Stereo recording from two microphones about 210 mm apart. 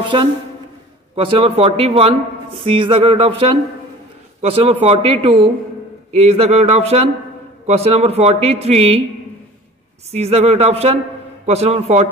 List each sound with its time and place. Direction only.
0.1 s a woman's voice: 25° right (ahead or behind)
10.1 s a woman's voice: 30° right (ahead or behind)